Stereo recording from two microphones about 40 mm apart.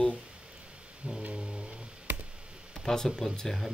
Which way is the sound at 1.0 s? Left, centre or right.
Right.